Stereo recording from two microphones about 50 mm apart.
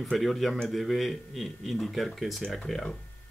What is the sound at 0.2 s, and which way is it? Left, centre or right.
Speech, centre.